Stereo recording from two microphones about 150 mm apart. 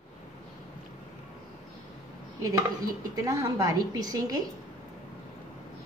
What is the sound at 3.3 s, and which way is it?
A woman's voice, 20° right (ahead or behind).